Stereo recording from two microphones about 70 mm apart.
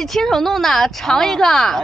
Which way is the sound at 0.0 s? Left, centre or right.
Centre.